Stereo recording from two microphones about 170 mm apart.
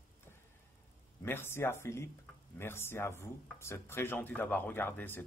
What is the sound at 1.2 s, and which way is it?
Speech, 15° left (ahead or behind).